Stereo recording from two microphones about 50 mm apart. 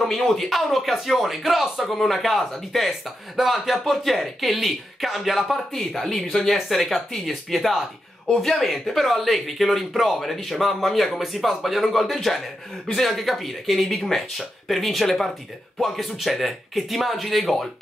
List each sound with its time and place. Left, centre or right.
0.0 s speech: centre